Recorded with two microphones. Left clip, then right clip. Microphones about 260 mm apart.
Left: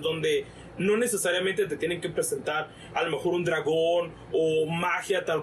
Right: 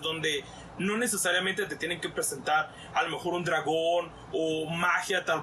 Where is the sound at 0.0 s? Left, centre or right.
Centre.